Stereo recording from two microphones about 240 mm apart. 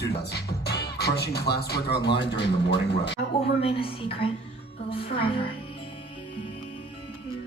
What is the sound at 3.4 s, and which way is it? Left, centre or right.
A woman's voice, left.